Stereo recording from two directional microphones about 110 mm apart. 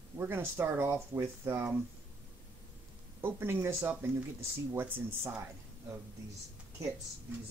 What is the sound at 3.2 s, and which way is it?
Speech, 20° right (ahead or behind).